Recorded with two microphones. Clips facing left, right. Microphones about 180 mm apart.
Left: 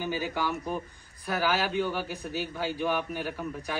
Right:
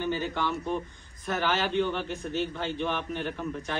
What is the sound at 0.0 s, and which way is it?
A man's voice, 10° left (ahead or behind).